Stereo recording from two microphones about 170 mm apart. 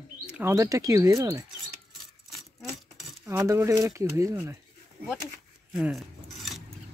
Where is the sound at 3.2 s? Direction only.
15° right (ahead or behind).